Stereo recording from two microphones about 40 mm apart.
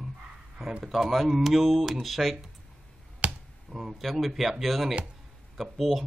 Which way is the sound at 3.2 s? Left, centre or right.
Right.